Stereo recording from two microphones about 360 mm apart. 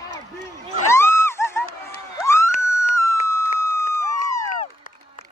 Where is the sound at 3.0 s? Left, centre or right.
Right.